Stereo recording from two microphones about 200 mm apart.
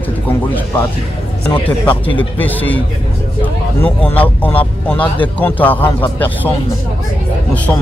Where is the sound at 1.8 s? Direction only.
10° left (ahead or behind).